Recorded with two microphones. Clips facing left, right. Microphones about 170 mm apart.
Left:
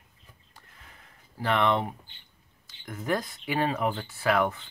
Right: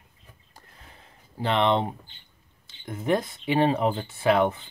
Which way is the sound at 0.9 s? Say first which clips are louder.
Right 4 dB; 25° right (ahead or behind).